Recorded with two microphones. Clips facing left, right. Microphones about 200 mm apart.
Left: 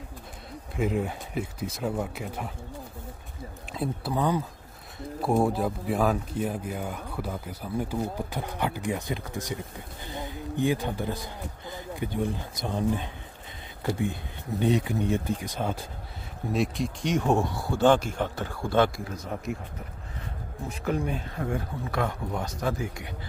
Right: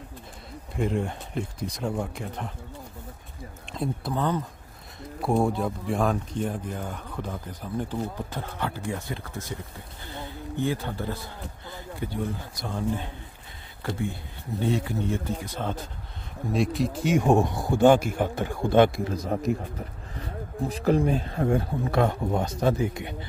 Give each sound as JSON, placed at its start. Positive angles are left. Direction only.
{"t": 0.7, "sound": "speech", "side_deg": 5}
{"t": 3.7, "sound": "speech", "side_deg": 5}
{"t": 16.5, "sound": "a man's voice", "side_deg": 0}
{"t": 19.2, "sound": "speech", "side_deg": -40}
{"t": 20.6, "sound": "speech", "side_deg": -35}